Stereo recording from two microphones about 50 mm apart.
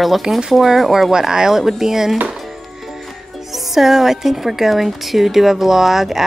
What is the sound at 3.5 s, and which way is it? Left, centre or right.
Speech, centre.